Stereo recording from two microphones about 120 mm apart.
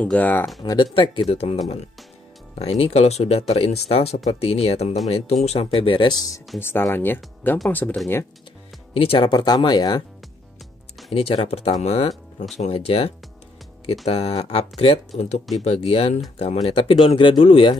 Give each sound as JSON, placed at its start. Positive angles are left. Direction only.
{"t": 0.0, "sound": "speech", "side_deg": 10}
{"t": 0.6, "sound": "speech", "side_deg": 30}
{"t": 0.9, "sound": "speech", "side_deg": 45}
{"t": 2.6, "sound": "speech", "side_deg": 55}
{"t": 6.6, "sound": "speech", "side_deg": 20}
{"t": 8.9, "sound": "speech", "side_deg": 50}
{"t": 9.3, "sound": "speech", "side_deg": 35}
{"t": 11.1, "sound": "speech", "side_deg": 55}